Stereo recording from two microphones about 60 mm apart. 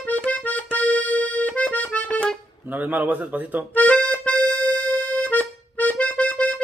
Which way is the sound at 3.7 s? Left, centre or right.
Left.